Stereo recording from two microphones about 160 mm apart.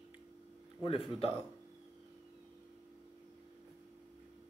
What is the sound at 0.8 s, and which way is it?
Speech, 35° left (ahead or behind).